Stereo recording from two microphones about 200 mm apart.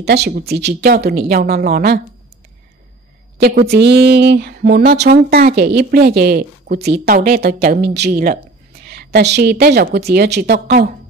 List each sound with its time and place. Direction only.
0.0 s a woman's voice: 55° right (ahead or behind)
3.6 s a woman's voice: 55° right (ahead or behind)